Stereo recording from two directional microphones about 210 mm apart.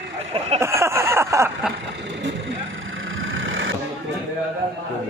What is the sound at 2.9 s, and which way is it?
Vehicle, 65° right (ahead or behind).